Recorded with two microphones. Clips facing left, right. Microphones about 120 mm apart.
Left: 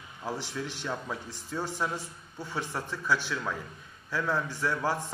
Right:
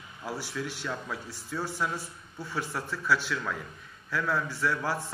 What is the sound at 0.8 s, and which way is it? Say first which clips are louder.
Speech: left 1 dB; 20° left (ahead or behind).